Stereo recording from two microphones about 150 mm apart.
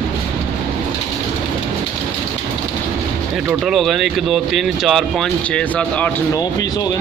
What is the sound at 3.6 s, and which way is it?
Speech, centre (ahead or behind).